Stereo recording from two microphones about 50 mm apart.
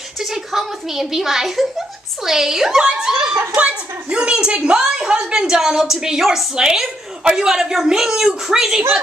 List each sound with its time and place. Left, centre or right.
0.2 s speech: centre
3.5 s a woman's voice: right